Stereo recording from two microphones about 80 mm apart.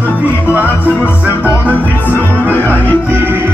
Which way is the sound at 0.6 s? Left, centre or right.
Left.